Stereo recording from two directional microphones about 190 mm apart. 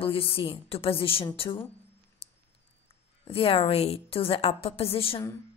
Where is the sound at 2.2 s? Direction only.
30° left (ahead or behind).